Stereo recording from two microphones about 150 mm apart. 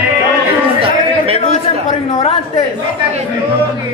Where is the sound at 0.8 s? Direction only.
40° right (ahead or behind).